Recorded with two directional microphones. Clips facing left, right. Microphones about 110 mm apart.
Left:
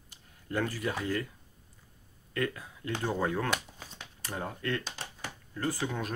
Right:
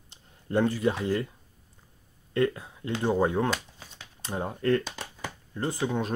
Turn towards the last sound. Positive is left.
turn(degrees=-20)  # may be behind; listen again after turning